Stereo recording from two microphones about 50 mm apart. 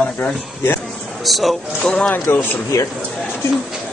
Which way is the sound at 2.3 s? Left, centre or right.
Left.